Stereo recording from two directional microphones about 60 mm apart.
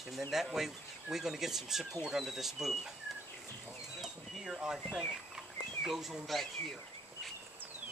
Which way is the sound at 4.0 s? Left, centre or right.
Centre.